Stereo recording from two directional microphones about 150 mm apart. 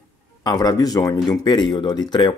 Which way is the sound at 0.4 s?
25° left (ahead or behind).